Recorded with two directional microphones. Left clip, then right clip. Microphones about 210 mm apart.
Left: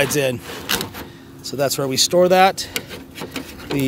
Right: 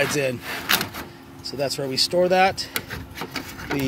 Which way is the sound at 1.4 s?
20° left (ahead or behind).